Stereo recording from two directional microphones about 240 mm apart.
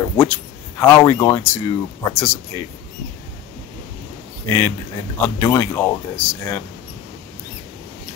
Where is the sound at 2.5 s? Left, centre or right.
Centre.